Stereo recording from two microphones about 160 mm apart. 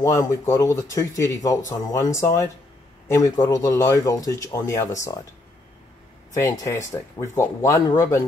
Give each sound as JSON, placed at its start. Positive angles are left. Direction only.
{"t": 0.0, "sound": "speech", "side_deg": 20}
{"t": 6.3, "sound": "speech", "side_deg": 20}